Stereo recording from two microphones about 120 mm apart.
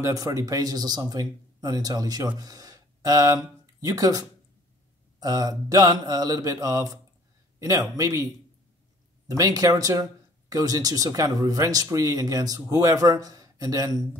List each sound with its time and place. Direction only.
0.0 s a man's voice: 30° right (ahead or behind)
9.3 s speech: 30° right (ahead or behind)